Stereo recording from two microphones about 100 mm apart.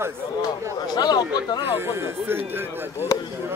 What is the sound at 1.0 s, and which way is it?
Speech, 45° left (ahead or behind).